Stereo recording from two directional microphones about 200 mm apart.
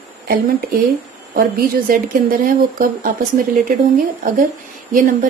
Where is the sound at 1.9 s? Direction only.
45° right (ahead or behind).